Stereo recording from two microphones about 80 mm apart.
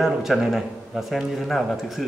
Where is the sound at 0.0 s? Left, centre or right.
Centre.